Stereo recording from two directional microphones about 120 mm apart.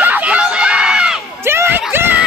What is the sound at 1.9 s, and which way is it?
Screaming, 15° right (ahead or behind).